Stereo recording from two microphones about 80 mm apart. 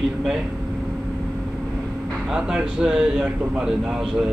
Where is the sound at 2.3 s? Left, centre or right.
Centre.